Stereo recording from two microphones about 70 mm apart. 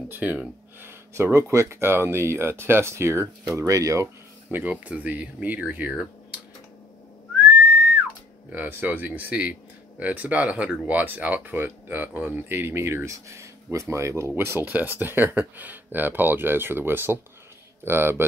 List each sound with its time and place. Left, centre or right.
0.1 s speech: right
3.5 s speech: right
4.5 s speech: right
8.5 s speech: right
14.3 s speech: right